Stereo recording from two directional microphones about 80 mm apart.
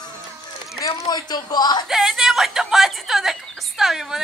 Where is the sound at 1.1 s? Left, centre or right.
Left.